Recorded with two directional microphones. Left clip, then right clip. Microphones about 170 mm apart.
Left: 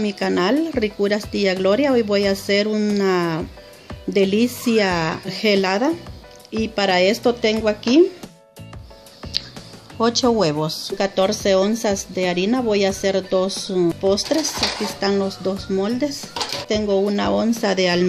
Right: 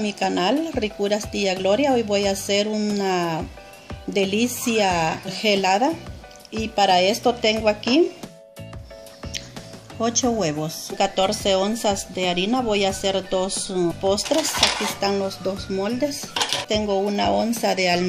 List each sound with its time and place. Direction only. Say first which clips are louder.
0.0 s speech: left 2 dB; 45° left (ahead or behind)
9.2 s music: left 7 dB; centre (ahead or behind)
9.9 s a woman's voice: left 5 dB; 45° left (ahead or behind)